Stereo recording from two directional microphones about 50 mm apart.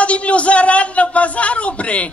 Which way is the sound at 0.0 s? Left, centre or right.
Left.